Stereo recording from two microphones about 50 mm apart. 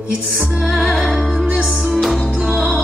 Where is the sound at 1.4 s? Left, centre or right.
Right.